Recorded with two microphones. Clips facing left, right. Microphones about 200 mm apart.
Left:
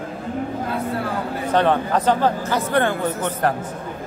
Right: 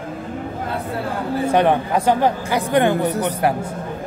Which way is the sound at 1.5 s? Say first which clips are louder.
Even; 15° right (ahead or behind).